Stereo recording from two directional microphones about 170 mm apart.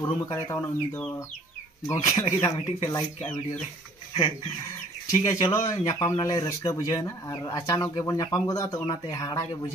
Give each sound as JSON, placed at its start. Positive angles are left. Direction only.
{"t": 0.0, "sound": "speech", "side_deg": 20}
{"t": 5.2, "sound": "speech", "side_deg": 20}